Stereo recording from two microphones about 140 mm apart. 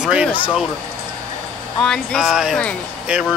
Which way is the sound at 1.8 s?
5° left (ahead or behind).